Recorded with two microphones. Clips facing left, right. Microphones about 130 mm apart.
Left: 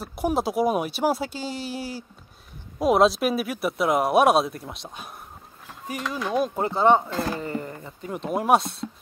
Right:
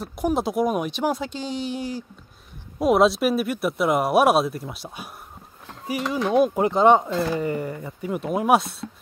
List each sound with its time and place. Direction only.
0.0 s speech: 5° left (ahead or behind)